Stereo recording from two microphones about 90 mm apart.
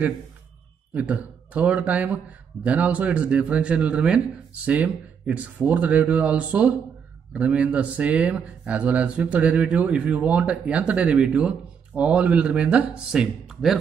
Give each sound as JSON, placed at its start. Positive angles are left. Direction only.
{"t": 0.9, "sound": "speech", "side_deg": -15}